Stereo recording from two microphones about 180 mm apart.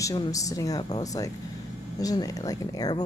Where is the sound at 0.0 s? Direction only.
20° left (ahead or behind).